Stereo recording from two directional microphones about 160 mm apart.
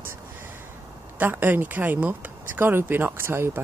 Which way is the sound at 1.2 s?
10° right (ahead or behind).